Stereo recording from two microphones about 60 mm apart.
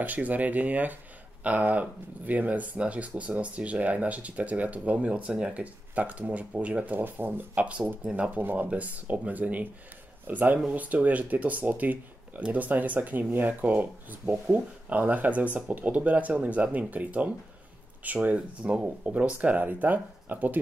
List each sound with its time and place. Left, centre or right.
0.0 s speech: right
7.5 s speech: right